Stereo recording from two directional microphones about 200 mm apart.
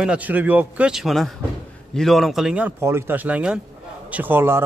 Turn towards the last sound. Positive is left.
turn(degrees=-10)  # may be behind; listen again after turning